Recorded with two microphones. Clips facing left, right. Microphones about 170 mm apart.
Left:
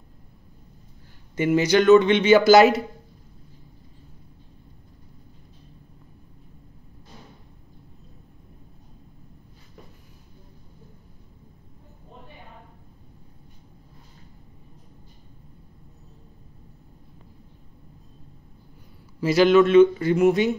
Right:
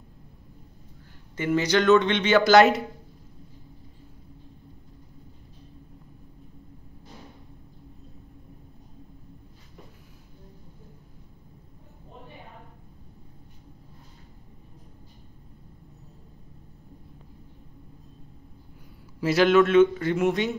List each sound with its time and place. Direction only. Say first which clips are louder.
1.3 s speech: left 4 dB; 15° left (ahead or behind)
19.2 s speech: left 3 dB; centre (ahead or behind)